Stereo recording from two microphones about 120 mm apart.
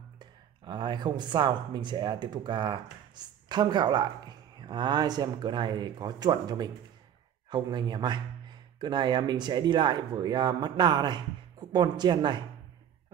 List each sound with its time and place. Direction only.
0.2 s speech: 40° right (ahead or behind)